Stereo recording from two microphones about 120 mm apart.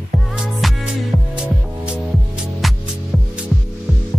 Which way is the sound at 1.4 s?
10° right (ahead or behind).